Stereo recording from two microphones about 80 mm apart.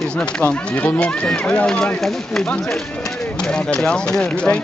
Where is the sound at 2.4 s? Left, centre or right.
Centre.